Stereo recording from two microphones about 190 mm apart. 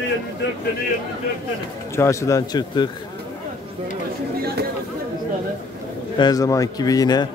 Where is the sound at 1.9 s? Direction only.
15° left (ahead or behind).